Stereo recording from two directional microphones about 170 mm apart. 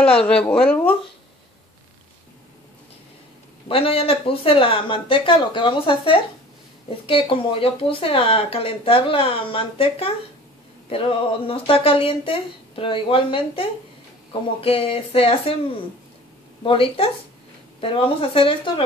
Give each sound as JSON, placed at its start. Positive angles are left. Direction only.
{"t": 0.2, "sound": "speech", "side_deg": 5}
{"t": 3.6, "sound": "speech", "side_deg": 35}
{"t": 16.6, "sound": "speech", "side_deg": 30}